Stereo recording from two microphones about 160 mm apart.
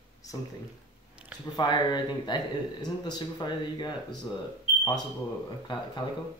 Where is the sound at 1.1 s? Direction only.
10° right (ahead or behind).